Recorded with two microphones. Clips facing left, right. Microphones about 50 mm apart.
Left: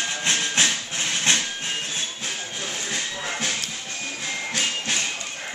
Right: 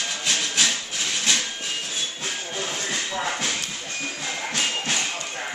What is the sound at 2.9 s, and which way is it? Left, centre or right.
Music, centre.